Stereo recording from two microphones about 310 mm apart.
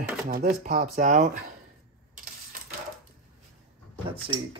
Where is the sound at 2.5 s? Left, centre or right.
Right.